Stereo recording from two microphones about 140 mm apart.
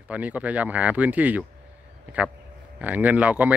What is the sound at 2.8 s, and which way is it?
Speech, 10° right (ahead or behind).